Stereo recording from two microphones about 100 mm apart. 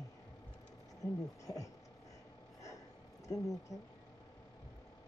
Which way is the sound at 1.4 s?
35° left (ahead or behind).